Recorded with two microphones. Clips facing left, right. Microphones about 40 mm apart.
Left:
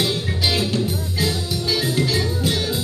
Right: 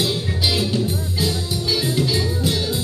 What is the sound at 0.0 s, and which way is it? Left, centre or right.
Music, centre.